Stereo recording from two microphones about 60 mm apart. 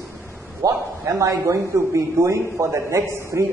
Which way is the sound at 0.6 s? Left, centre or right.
Right.